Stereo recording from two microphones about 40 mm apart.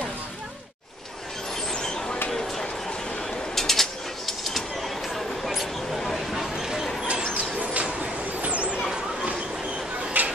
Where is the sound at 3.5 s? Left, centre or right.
Centre.